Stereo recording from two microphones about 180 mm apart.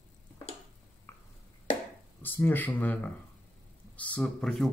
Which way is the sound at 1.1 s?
15° left (ahead or behind).